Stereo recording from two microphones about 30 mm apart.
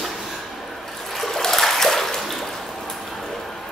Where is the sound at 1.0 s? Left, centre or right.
Centre.